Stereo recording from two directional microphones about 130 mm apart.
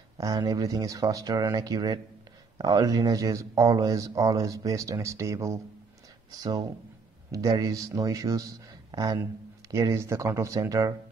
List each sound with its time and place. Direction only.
0.2 s speech: 30° right (ahead or behind)
7.2 s speech: 25° right (ahead or behind)